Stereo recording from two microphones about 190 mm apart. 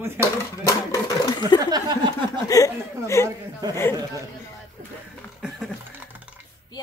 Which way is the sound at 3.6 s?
20° right (ahead or behind).